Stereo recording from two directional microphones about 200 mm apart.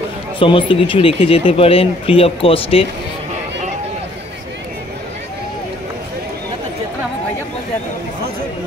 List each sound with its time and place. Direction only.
0.4 s speech: 25° left (ahead or behind)